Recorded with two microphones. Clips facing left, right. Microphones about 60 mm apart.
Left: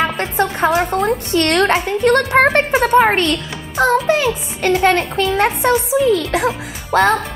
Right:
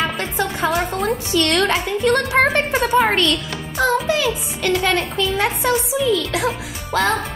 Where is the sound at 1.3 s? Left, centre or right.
Left.